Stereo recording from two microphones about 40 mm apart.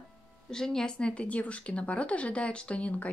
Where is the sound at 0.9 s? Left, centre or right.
Left.